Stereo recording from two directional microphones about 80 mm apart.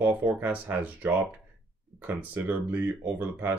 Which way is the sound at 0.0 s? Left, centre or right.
Right.